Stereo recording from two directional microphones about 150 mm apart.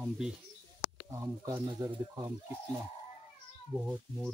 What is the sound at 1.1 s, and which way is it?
Speech, 20° right (ahead or behind).